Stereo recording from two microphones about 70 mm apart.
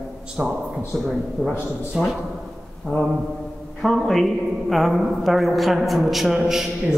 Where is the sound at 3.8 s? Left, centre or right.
Centre.